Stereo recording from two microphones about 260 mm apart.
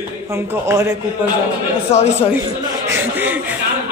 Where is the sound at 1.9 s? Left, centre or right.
Left.